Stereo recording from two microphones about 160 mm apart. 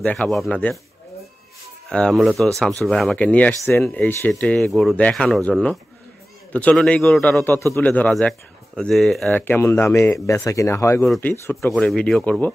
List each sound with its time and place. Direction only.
0.0 s a man's voice: 5° left (ahead or behind)
1.9 s a man's voice: 5° left (ahead or behind)
9.4 s a man's voice: 15° left (ahead or behind)